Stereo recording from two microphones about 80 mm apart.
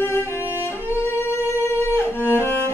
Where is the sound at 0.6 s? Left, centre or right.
Left.